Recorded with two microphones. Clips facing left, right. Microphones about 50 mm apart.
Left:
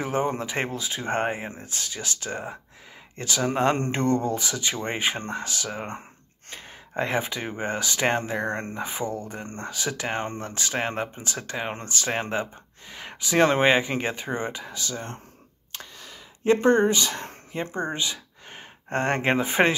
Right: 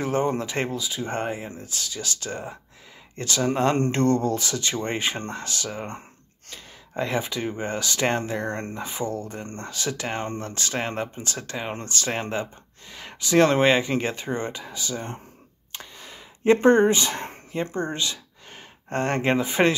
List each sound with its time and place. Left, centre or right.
0.0 s speech: centre
0.7 s speech: left; by 14.7 s centre
14.7 s speech: centre
16.0 s speech: right
17.5 s speech: centre; by 19.7 s left